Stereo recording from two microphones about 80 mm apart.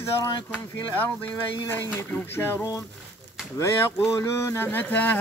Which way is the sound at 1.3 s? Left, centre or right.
Left.